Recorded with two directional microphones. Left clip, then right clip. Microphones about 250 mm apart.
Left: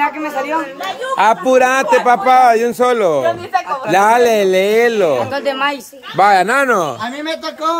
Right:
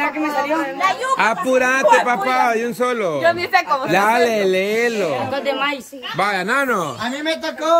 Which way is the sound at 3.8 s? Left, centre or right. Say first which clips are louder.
Left 5 dB; centre.